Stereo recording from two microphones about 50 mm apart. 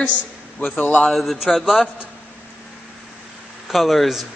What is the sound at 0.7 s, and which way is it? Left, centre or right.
Speech, left.